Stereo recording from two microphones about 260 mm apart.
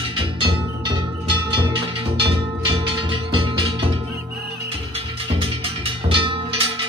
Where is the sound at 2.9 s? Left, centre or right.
Centre.